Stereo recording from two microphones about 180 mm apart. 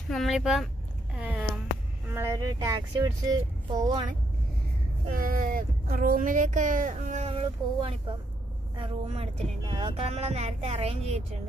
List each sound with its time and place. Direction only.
0.1 s speech: centre (ahead or behind)
1.1 s a sound: 5° right (ahead or behind)
2.0 s speech: 15° right (ahead or behind)
5.1 s speech: 50° right (ahead or behind); by 11.2 s 35° right (ahead or behind)